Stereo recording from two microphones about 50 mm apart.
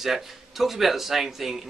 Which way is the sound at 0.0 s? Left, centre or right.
Centre.